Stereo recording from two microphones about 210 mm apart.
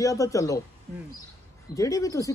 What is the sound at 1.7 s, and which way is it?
Speech, 15° left (ahead or behind).